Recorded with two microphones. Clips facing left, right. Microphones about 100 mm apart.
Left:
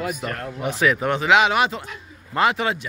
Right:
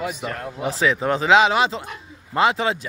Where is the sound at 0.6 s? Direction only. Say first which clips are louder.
Even; 30° right (ahead or behind).